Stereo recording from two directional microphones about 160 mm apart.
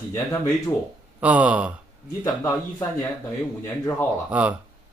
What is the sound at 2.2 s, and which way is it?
Speech, 20° left (ahead or behind).